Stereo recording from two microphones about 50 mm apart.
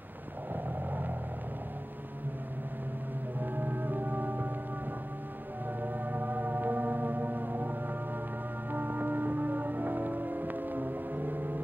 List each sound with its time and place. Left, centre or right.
0.5 s wild animals: right
3.3 s organ: right
5.8 s music: right
8.7 s music: right